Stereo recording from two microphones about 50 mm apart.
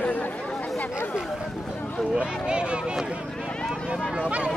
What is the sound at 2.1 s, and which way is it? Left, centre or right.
Speech, centre.